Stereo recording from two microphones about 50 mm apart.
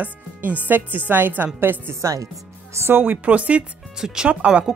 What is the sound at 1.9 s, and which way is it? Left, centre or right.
Speech, right.